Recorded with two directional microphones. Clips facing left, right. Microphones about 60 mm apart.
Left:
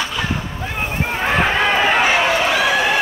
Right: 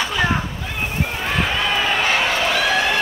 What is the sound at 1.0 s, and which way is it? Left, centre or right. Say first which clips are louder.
Run: left 7 dB; left.